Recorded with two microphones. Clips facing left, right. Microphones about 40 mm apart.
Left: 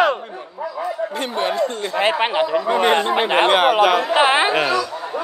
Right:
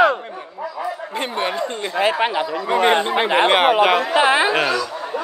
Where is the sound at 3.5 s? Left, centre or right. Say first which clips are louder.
Even; right.